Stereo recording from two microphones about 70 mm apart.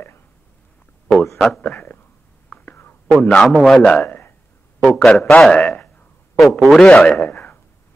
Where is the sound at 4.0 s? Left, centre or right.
Left.